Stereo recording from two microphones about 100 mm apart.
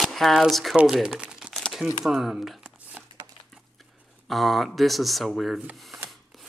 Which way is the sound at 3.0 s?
15° right (ahead or behind).